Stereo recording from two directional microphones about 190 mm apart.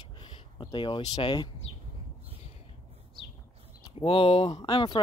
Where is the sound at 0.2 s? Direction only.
25° left (ahead or behind).